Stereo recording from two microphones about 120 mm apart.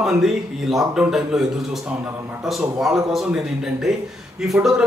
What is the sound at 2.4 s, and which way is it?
Speech, centre (ahead or behind).